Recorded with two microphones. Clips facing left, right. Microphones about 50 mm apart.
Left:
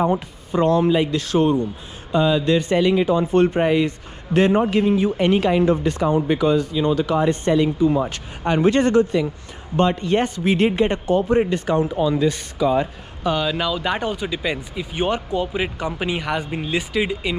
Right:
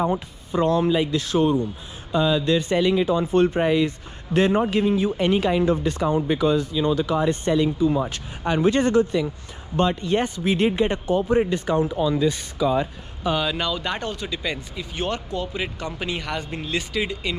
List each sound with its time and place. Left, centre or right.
0.5 s a man's voice: left
2.4 s a man's voice: left
3.8 s a man's voice: left
5.9 s a man's voice: left
6.1 s a man's voice: left
13.3 s speech: centre